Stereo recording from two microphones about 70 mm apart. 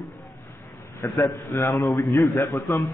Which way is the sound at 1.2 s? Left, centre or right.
Left.